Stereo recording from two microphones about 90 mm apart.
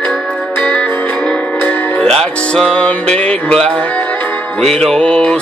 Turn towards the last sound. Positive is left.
turn(degrees=10)  # may be behind; listen again after turning